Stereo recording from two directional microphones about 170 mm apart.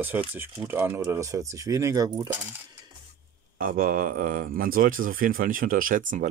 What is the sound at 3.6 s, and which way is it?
A man's voice, 55° right (ahead or behind).